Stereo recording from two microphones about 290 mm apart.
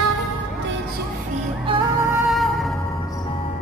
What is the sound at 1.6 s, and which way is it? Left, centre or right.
Music, centre.